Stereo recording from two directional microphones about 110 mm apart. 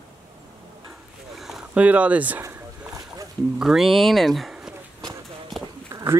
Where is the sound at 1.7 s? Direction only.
15° right (ahead or behind).